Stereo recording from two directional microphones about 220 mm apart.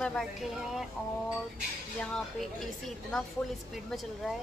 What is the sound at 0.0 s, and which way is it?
Speech, 5° left (ahead or behind).